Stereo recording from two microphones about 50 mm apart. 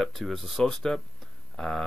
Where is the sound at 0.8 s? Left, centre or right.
Centre.